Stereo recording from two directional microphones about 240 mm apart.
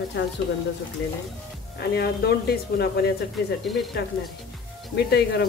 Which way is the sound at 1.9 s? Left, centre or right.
Left.